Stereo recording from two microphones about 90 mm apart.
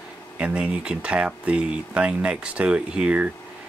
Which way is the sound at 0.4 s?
15° right (ahead or behind).